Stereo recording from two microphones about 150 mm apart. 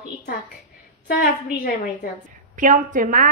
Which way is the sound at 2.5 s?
60° right (ahead or behind).